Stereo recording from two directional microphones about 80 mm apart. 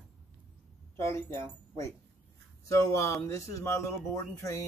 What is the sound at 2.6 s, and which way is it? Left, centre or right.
Speech, left.